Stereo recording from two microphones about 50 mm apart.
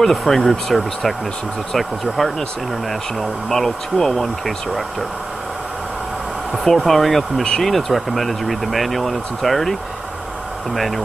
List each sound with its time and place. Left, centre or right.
0.0 s speech: centre
6.5 s speech: centre